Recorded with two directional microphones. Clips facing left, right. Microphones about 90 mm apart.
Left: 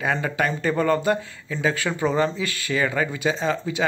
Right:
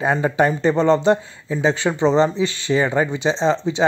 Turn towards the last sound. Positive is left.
turn(degrees=-25)  # may be behind; listen again after turning